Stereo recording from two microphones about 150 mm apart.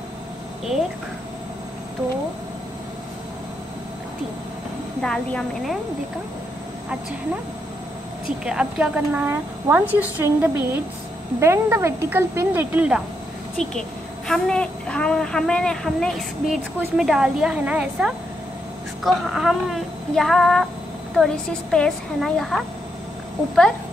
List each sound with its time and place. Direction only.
5.0 s a woman's voice: 5° left (ahead or behind)
8.5 s speech: 5° right (ahead or behind)
13.6 s a woman's voice: 5° left (ahead or behind)